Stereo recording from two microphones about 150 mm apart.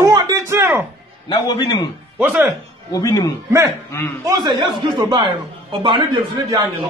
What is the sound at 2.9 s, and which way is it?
Speech, 20° left (ahead or behind).